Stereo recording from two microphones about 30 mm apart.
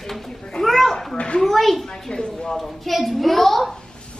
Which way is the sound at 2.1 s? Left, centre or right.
Left.